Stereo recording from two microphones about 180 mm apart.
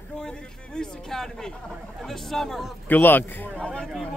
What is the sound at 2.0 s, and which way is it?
A man's voice, centre (ahead or behind).